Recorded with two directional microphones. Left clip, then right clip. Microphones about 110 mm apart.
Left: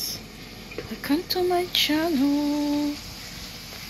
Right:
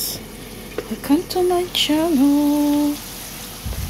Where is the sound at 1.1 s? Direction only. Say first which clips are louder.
Right 5 dB; 20° right (ahead or behind).